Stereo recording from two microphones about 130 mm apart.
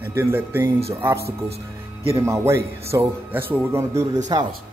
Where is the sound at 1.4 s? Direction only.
50° right (ahead or behind).